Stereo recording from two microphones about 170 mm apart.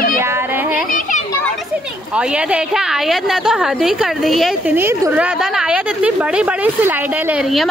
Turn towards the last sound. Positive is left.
turn(degrees=-5)  # may be behind; listen again after turning